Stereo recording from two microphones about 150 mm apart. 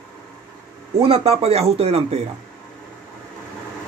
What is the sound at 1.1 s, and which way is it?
Speech, 40° right (ahead or behind).